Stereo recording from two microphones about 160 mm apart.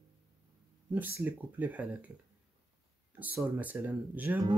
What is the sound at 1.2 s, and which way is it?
Speech, 10° right (ahead or behind).